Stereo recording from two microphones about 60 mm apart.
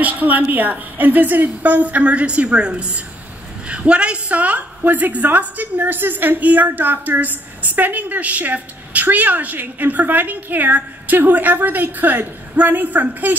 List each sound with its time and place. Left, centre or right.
0.0 s a woman's voice: right